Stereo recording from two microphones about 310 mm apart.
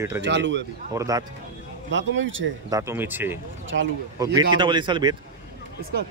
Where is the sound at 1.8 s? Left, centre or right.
Right.